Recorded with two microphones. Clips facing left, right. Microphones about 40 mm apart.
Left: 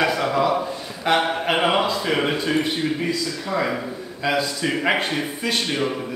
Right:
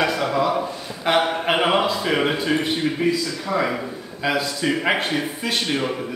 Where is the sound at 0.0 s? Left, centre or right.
Centre.